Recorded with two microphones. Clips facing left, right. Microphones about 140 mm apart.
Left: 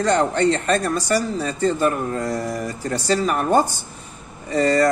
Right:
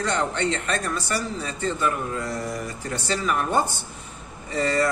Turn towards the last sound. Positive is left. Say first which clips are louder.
# left 6 dB
turn(degrees=40)  # may be behind; listen again after turning